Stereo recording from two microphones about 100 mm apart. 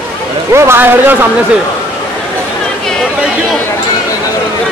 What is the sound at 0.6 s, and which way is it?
Speech, 20° right (ahead or behind).